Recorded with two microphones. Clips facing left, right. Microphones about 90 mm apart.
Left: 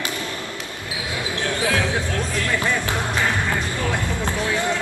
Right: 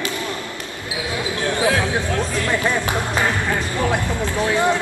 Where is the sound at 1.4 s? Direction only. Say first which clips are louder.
Right 3 dB; 25° right (ahead or behind).